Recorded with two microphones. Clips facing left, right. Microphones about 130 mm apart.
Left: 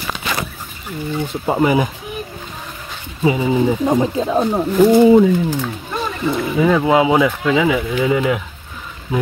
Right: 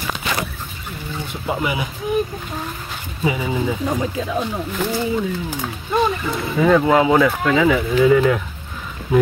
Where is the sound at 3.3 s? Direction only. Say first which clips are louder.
Left 6 dB; 25° left (ahead or behind); by 5.0 s 45° left (ahead or behind).